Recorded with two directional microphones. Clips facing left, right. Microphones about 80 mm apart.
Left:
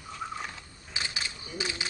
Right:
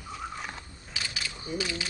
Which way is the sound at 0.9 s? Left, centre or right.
Left.